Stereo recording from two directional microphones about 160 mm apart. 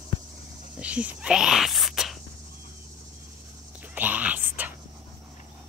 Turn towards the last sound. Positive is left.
turn(degrees=-10)  # may be behind; listen again after turning